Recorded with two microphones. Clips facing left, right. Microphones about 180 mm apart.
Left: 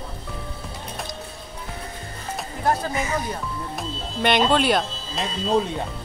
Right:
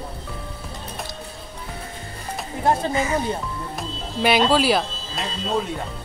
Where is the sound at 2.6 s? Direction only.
25° right (ahead or behind).